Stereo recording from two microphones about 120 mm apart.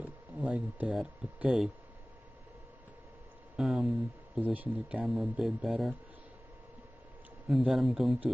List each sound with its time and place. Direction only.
0.0 s speech: 10° right (ahead or behind)
3.5 s speech: centre (ahead or behind)
5.0 s speech: centre (ahead or behind)
7.4 s speech: centre (ahead or behind)